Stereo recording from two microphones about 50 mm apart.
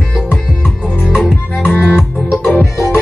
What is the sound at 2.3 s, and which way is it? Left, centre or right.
Music, left.